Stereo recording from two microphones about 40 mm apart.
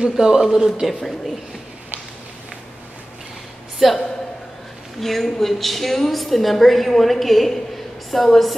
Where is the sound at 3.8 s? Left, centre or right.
Centre.